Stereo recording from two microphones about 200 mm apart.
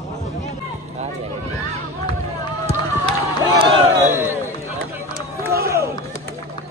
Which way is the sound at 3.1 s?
25° right (ahead or behind).